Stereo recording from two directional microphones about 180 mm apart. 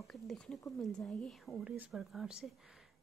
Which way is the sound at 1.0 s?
5° left (ahead or behind).